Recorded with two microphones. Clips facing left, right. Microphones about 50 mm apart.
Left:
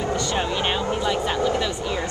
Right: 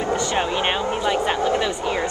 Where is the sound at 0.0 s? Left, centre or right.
Centre.